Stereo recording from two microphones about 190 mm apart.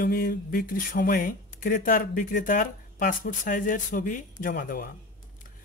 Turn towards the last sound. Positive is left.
turn(degrees=50)  # may be behind; listen again after turning